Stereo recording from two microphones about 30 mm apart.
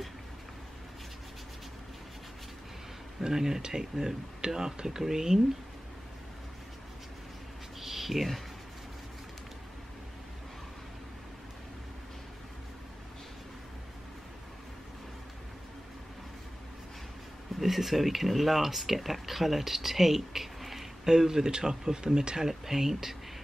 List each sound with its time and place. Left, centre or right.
3.3 s speech: centre
7.8 s a sound: centre
17.6 s speech: centre
21.1 s speech: centre
22.5 s speech: centre